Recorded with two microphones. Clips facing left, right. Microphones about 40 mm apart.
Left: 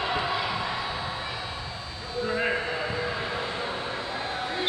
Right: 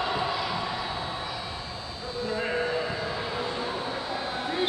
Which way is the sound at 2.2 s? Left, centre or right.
Left.